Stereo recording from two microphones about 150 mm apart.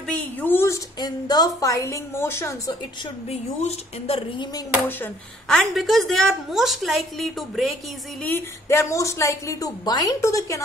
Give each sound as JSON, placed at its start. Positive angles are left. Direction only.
{"t": 0.1, "sound": "speech", "side_deg": 10}
{"t": 0.9, "sound": "a woman's voice", "side_deg": 25}
{"t": 3.3, "sound": "a woman's voice", "side_deg": 45}
{"t": 5.5, "sound": "a woman's voice", "side_deg": 0}
{"t": 8.2, "sound": "a woman's voice", "side_deg": 15}